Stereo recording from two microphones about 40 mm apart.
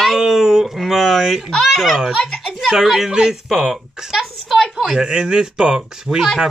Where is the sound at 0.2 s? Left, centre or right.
Centre.